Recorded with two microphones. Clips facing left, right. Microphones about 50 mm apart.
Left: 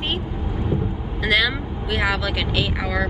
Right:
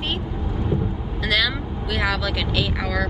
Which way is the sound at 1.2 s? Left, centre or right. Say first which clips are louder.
Left 2 dB; centre.